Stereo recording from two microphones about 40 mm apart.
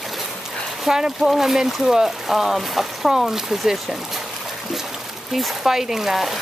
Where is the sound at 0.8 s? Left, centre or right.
Centre.